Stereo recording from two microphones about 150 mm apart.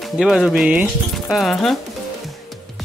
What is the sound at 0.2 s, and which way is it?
Speech, 5° right (ahead or behind).